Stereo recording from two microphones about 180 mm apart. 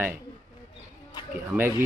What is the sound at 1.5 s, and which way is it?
Speech, centre (ahead or behind).